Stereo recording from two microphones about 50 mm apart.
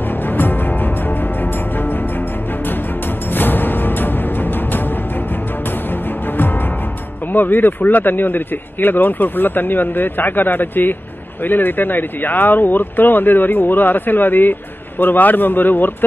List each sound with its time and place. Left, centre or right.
0.3 s music: left
3.3 s music: left
7.3 s speech: left